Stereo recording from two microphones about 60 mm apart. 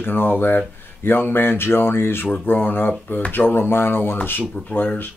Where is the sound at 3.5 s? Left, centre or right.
Left.